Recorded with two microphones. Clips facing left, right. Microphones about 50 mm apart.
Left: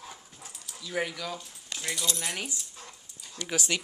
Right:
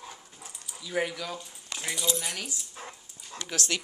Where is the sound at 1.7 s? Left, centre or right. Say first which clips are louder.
Right 2 dB; centre.